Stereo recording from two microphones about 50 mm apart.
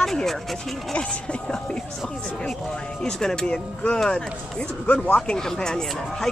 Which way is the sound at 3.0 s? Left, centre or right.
Centre.